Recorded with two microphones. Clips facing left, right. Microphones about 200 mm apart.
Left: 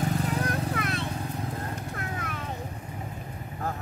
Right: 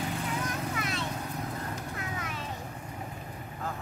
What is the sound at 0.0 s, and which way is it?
Vehicle, 40° left (ahead or behind).